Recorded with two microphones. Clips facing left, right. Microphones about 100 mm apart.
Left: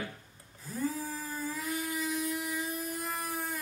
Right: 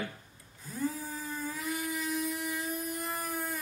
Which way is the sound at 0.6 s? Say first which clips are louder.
Left 1 dB; centre (ahead or behind).